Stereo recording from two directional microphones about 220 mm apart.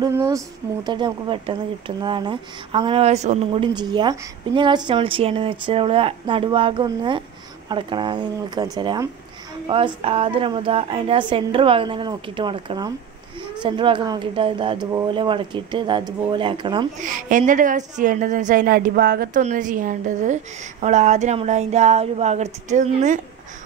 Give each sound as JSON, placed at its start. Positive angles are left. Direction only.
{"t": 0.0, "sound": "speech", "side_deg": -15}
{"t": 17.0, "sound": "a woman's voice", "side_deg": -35}